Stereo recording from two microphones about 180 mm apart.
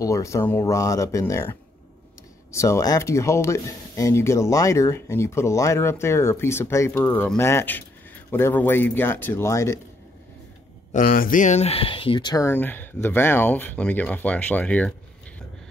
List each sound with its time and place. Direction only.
0.0 s speech: 15° left (ahead or behind)
10.9 s speech: 50° left (ahead or behind); by 15.0 s 5° left (ahead or behind)